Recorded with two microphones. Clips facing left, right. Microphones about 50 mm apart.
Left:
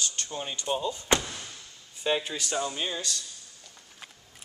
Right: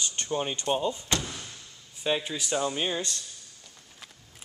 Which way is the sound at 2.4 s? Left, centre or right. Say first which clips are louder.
Right 2 dB; centre.